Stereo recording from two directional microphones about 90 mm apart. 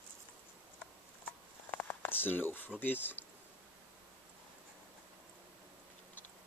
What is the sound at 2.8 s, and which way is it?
Speech, 20° left (ahead or behind).